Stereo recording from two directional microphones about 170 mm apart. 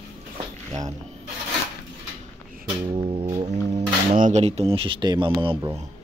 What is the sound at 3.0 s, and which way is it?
Speech, 35° right (ahead or behind).